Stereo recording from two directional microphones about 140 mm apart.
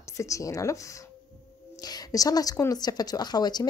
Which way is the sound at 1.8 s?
25° left (ahead or behind).